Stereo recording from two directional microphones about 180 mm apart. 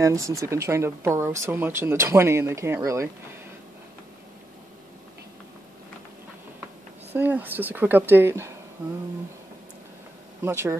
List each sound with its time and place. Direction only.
0.0 s speech: 15° right (ahead or behind)
7.1 s speech: 10° right (ahead or behind)
10.4 s speech: 15° right (ahead or behind)